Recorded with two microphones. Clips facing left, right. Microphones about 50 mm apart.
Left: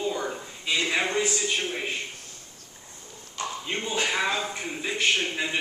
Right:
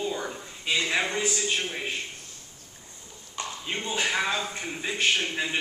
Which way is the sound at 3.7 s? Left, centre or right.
Centre.